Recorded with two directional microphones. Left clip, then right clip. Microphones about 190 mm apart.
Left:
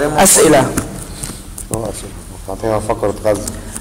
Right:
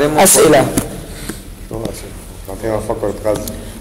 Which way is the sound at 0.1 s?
Centre (ahead or behind).